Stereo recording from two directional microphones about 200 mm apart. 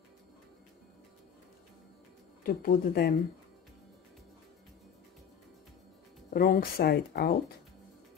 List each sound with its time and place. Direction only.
2.4 s speech: 45° left (ahead or behind)
6.3 s speech: 45° left (ahead or behind)